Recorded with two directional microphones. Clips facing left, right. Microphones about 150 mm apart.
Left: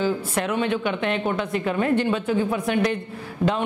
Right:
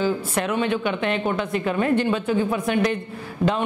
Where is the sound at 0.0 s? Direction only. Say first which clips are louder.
Right 1 dB; 15° right (ahead or behind).